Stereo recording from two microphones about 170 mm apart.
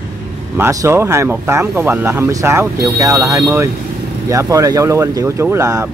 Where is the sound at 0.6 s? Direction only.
15° right (ahead or behind).